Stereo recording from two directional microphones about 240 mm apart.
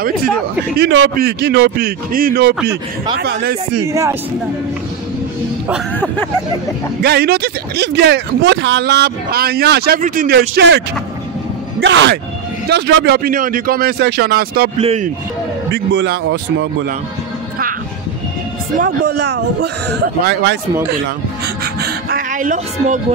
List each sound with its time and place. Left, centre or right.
0.7 s a man's voice: right
3.8 s speech: centre
7.0 s speech: right
10.5 s speech: right
11.8 s bellow: right
12.6 s a man's voice: right
14.8 s a man's voice: right
15.7 s speech: right
18.8 s speech: right
21.8 s music: right